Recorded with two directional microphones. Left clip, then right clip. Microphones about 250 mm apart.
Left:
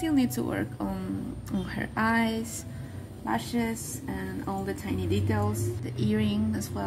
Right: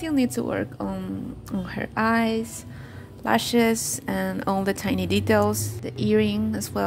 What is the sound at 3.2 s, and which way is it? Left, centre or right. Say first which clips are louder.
A woman's voice: right 9 dB; right.